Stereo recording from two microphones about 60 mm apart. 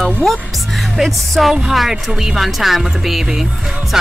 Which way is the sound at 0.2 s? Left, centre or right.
Centre.